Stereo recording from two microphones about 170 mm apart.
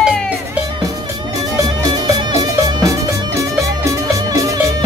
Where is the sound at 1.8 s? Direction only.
20° right (ahead or behind).